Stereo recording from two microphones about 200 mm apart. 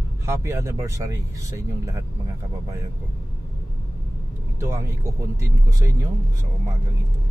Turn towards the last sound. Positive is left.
turn(degrees=-20)  # may be behind; listen again after turning